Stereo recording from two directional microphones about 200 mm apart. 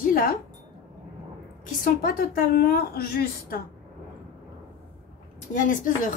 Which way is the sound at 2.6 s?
50° left (ahead or behind).